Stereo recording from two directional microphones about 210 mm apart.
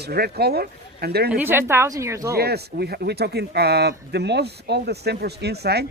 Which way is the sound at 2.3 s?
50° right (ahead or behind).